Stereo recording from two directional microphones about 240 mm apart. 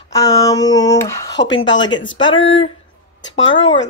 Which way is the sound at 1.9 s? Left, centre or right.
Left.